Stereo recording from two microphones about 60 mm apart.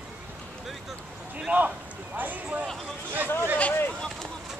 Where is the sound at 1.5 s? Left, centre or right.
Right.